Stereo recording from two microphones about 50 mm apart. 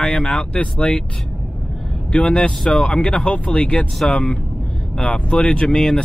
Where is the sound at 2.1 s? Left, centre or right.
Left.